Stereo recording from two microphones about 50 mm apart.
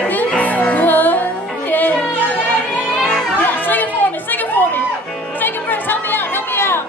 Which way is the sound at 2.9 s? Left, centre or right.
Centre.